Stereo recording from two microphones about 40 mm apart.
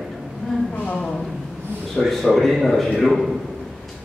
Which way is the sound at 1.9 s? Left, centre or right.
Centre.